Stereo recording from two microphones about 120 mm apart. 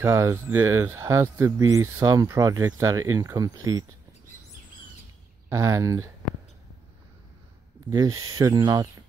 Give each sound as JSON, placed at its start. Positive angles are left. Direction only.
{"t": 0.0, "sound": "speech", "side_deg": -20}
{"t": 5.5, "sound": "speech", "side_deg": -25}
{"t": 7.9, "sound": "speech", "side_deg": -30}